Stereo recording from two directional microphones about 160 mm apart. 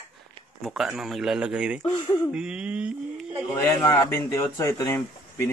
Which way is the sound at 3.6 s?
20° left (ahead or behind).